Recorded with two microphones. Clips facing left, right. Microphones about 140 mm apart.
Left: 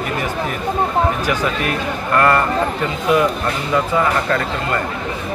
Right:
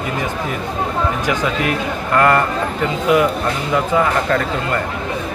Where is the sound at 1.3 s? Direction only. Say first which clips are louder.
Right 1 dB; 20° right (ahead or behind).